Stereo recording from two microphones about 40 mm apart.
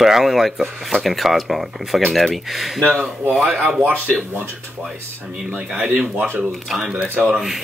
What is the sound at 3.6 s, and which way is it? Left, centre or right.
Speech, right.